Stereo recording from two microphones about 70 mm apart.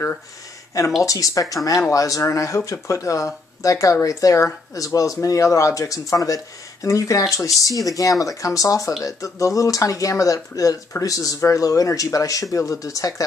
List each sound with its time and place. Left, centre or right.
1.0 s speech: left